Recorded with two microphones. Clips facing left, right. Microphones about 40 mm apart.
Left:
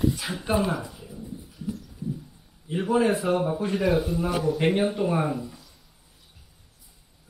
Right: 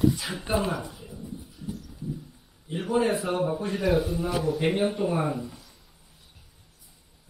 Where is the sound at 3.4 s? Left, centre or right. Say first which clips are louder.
Left 1 dB; centre.